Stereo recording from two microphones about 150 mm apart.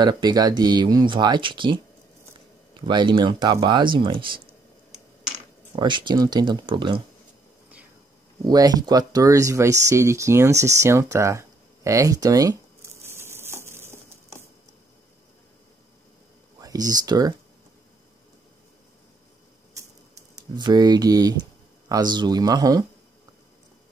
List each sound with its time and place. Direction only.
0.0 s speech: 25° right (ahead or behind)
2.9 s speech: 30° right (ahead or behind)
5.8 s speech: 30° right (ahead or behind)
8.5 s speech: 25° right (ahead or behind)
10.8 s a sound: 20° right (ahead or behind)
16.5 s speech: 25° right (ahead or behind)
20.5 s speech: 30° right (ahead or behind)